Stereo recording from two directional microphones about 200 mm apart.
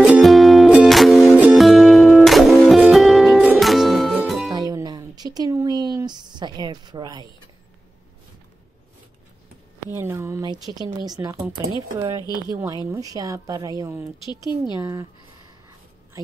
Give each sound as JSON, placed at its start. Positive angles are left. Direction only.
{"t": 0.0, "sound": "music", "side_deg": -5}
{"t": 4.6, "sound": "a sound", "side_deg": -20}
{"t": 9.9, "sound": "a woman's voice", "side_deg": -15}
{"t": 12.9, "sound": "speech", "side_deg": -15}